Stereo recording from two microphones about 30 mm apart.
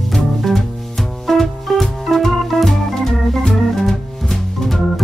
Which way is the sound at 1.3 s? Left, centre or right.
Centre.